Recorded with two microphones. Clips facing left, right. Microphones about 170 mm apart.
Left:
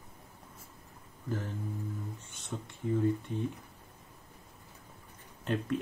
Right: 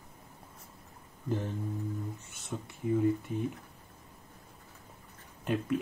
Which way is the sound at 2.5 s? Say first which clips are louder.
Right 2 dB; 5° right (ahead or behind).